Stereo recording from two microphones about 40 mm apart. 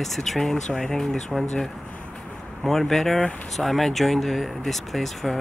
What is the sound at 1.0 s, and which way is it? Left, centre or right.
Speech, centre.